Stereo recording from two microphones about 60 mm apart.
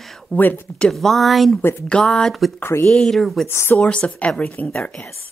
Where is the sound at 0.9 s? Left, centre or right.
Centre.